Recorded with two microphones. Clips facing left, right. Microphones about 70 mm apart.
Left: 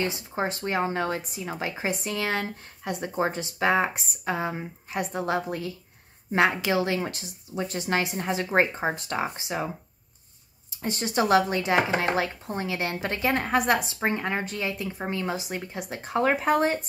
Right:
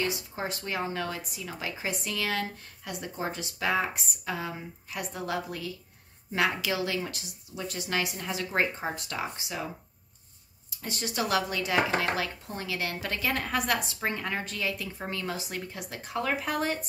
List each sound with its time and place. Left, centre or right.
0.0 s speech: left
10.8 s speech: left